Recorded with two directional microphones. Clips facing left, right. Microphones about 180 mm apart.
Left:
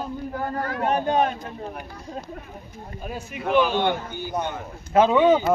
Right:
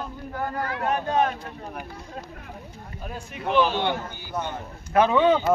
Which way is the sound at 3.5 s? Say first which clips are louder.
Left 2 dB; 50° left (ahead or behind).